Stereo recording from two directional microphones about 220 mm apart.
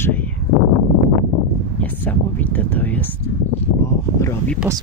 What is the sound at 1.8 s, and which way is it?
Speech, 10° left (ahead or behind).